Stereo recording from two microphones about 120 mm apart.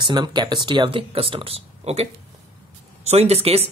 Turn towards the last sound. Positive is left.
turn(degrees=-55)  # may be behind; listen again after turning